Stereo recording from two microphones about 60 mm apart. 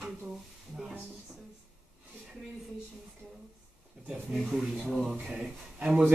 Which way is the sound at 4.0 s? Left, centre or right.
Centre.